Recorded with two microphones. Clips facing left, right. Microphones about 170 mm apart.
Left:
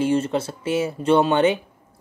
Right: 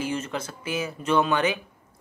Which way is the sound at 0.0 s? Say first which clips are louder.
Left 9 dB; 30° left (ahead or behind).